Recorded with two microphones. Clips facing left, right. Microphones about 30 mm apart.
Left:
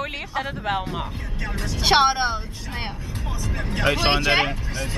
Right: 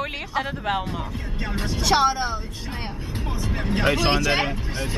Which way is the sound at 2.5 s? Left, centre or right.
Right.